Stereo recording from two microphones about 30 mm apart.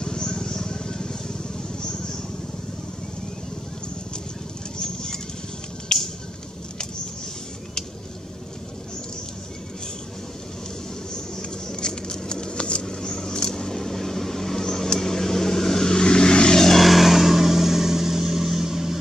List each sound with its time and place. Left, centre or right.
0.0 s vehicle: left
4.7 s patter: left
5.9 s a sound: left
11.1 s a sound: centre; by 12.8 s left
12.8 s vehicle: centre
16.8 s vehicle: centre